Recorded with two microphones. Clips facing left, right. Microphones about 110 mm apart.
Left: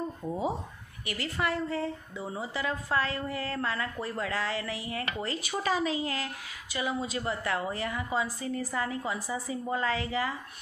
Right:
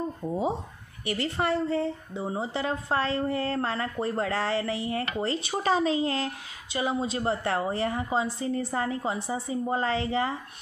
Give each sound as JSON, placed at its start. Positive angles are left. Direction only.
{"t": 1.0, "sound": "a woman's voice", "side_deg": -30}